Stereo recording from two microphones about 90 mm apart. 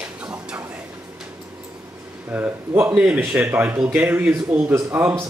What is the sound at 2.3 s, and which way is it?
Speech, 20° right (ahead or behind).